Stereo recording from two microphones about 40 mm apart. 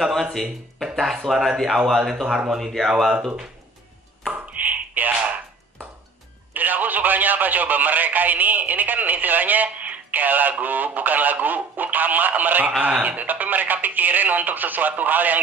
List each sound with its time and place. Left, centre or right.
0.0 s a man's voice: centre
0.3 s speech: centre
1.1 s a man's voice: centre
2.2 s speech: centre
2.6 s a man's voice: centre
4.3 s a sound: right
6.5 s radio: right
12.8 s speech: right